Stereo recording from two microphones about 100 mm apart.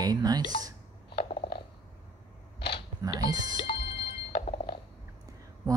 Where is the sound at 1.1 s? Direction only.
60° left (ahead or behind).